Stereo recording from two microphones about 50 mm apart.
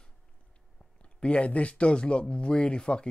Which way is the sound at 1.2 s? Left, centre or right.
Left.